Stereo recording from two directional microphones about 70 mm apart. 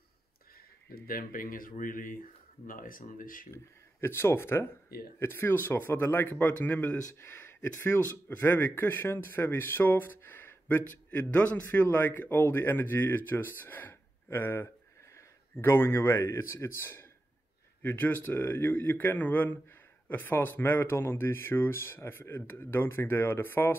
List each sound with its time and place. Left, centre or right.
3.5 s a man's voice: left